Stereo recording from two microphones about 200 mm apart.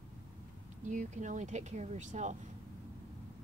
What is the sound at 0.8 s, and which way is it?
Speech, 40° right (ahead or behind).